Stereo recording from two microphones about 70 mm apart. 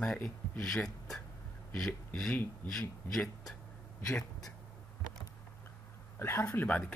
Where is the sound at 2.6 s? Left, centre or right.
Left.